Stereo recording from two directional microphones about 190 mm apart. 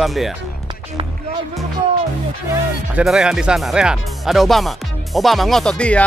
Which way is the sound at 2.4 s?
5° right (ahead or behind).